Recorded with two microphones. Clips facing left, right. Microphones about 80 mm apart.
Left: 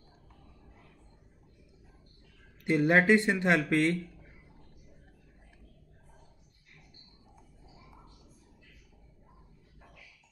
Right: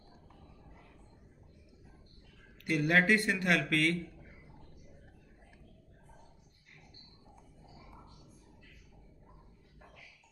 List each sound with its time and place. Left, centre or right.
2.6 s speech: left